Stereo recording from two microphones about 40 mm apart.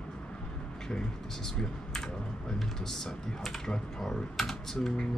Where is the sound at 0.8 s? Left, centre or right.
Centre.